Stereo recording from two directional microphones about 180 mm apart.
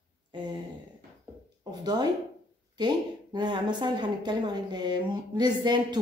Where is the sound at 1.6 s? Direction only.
25° right (ahead or behind).